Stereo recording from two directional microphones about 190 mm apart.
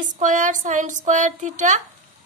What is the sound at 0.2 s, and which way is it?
A woman's voice, 40° right (ahead or behind).